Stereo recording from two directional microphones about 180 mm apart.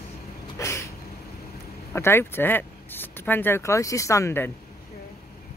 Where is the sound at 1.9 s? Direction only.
15° left (ahead or behind).